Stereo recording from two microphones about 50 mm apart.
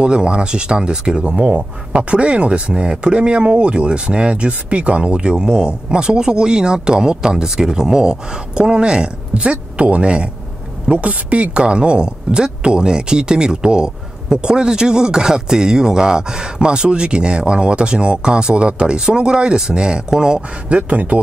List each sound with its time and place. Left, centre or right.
0.0 s a woman's voice: centre